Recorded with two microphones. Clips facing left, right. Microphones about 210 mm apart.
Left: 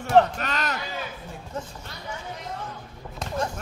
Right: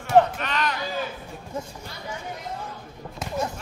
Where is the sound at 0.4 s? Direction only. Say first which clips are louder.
Right 2 dB; 40° left (ahead or behind).